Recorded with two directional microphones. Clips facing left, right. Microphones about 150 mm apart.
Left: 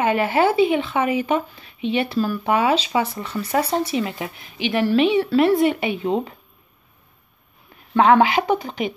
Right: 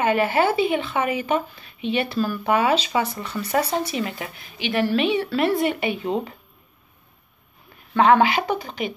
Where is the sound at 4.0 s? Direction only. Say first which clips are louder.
Left 3 dB; 20° left (ahead or behind).